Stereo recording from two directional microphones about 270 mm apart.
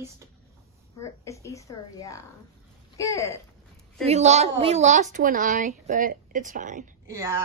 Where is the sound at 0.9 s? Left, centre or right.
Centre.